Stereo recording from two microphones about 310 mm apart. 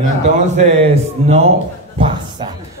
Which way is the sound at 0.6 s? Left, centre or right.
Centre.